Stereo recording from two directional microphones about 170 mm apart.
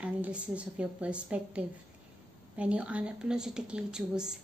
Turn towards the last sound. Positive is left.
turn(degrees=-5)  # may be behind; listen again after turning